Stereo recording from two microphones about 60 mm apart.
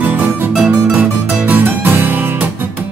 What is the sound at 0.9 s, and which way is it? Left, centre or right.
Music, right.